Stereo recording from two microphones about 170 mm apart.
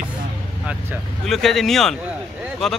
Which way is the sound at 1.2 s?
Centre (ahead or behind).